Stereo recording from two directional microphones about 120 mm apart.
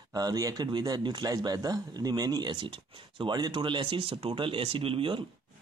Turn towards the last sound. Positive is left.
turn(degrees=-45)  # may be behind; listen again after turning